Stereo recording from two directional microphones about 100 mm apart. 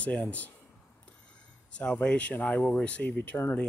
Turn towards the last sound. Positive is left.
turn(degrees=15)  # may be behind; listen again after turning